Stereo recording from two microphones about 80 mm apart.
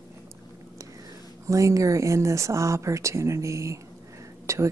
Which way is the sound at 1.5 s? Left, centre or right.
Right.